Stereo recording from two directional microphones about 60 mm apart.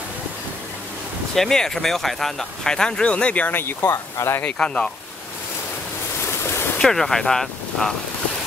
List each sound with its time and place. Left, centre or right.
1.3 s speech: centre
3.4 s speech: left
3.9 s speech: left
4.4 s speech: left
6.8 s speech: centre